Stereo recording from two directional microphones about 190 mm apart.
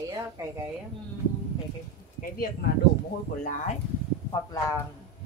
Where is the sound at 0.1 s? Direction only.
15° right (ahead or behind).